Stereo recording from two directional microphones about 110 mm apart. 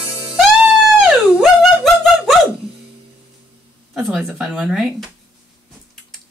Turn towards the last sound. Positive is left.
turn(degrees=0)  # may be behind; listen again after turning